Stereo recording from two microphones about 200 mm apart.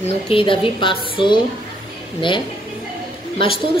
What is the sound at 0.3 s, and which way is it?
A woman's voice, 25° left (ahead or behind).